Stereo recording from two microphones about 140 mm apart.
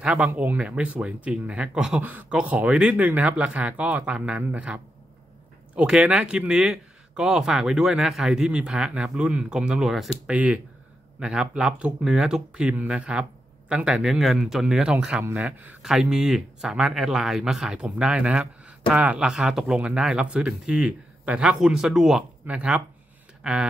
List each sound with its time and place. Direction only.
0.0 s speech: 10° right (ahead or behind)